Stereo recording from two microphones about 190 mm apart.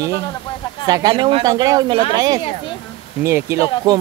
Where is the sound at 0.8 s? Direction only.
20° right (ahead or behind).